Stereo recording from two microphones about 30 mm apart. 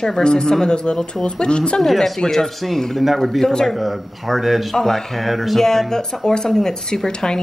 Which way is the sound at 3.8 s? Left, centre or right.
Centre.